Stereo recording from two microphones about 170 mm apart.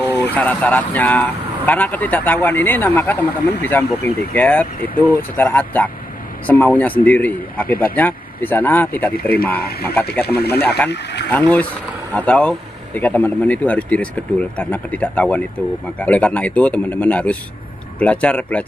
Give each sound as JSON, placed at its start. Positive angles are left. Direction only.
{"t": 0.2, "sound": "speech", "side_deg": 10}
{"t": 9.1, "sound": "speech", "side_deg": 60}
{"t": 9.8, "sound": "speech", "side_deg": 10}
{"t": 10.2, "sound": "speech", "side_deg": 70}
{"t": 11.3, "sound": "speech", "side_deg": 10}